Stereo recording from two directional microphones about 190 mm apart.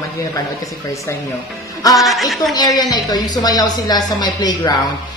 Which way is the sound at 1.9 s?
Centre (ahead or behind).